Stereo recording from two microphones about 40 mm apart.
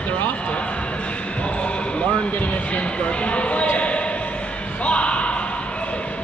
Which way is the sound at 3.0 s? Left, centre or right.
Left.